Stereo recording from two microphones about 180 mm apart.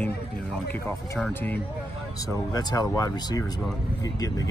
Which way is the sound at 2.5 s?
20° left (ahead or behind).